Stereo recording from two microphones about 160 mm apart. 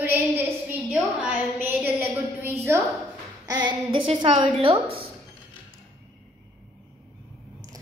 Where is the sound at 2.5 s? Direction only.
15° right (ahead or behind); by 4.8 s 35° right (ahead or behind).